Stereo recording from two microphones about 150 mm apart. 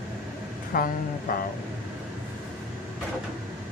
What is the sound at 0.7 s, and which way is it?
Speech, 70° left (ahead or behind).